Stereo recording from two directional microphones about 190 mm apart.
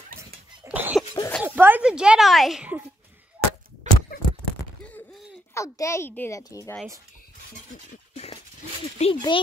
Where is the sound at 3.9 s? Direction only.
40° right (ahead or behind).